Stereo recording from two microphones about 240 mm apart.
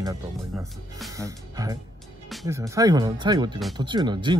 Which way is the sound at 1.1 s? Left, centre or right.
Centre.